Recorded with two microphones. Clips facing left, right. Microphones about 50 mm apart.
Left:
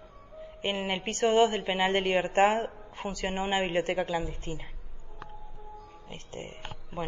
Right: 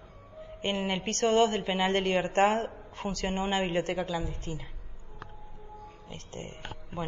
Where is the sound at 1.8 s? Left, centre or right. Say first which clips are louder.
Left 1 dB; centre.